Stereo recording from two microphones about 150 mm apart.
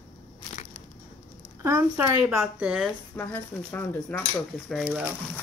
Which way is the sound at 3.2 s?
15° left (ahead or behind).